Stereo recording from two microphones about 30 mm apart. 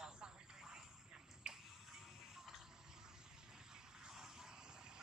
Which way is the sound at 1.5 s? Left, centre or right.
Right.